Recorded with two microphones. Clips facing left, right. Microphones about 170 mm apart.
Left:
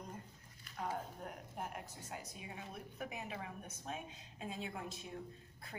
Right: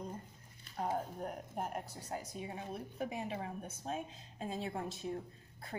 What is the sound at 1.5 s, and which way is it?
Speech, 45° right (ahead or behind).